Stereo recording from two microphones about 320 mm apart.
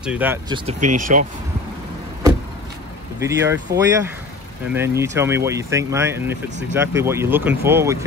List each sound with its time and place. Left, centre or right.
0.0 s speech: centre
0.7 s speech: right
3.2 s speech: centre